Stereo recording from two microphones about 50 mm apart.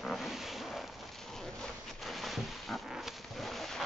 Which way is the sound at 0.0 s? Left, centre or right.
Centre.